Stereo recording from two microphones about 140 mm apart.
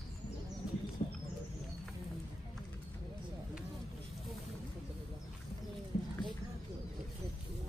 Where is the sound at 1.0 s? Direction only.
50° left (ahead or behind).